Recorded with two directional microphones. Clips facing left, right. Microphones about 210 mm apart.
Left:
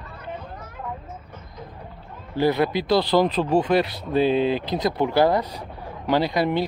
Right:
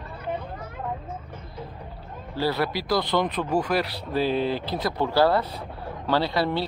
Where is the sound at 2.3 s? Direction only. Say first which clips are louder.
Left 5 dB; 20° left (ahead or behind).